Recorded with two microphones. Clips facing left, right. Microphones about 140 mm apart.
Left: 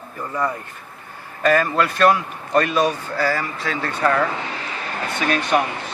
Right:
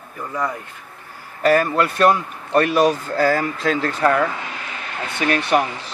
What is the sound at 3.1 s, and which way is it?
Speech, 50° right (ahead or behind).